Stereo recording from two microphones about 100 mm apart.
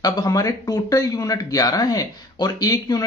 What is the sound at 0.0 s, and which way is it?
Speech, 40° left (ahead or behind).